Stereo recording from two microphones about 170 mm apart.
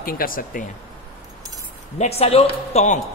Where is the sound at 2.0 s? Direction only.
35° left (ahead or behind).